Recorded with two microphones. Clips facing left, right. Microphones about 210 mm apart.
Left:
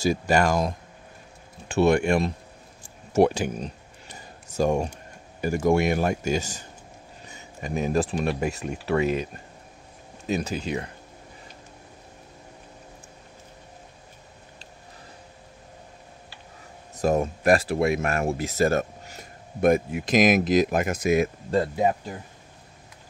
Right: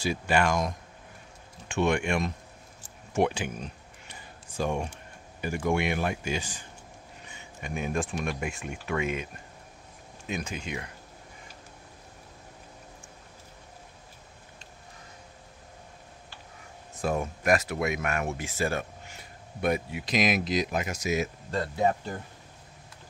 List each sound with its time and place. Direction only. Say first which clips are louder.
0.0 s speech: left 4 dB; 40° left (ahead or behind)
3.1 s a sound: left 6 dB; 40° left (ahead or behind)
5.4 s speech: left 6 dB; 40° left (ahead or behind)
7.2 s a sound: left 5 dB; 40° left (ahead or behind)
8.1 s speech: left 6 dB; 35° left (ahead or behind)
16.9 s speech: left 6 dB; 40° left (ahead or behind)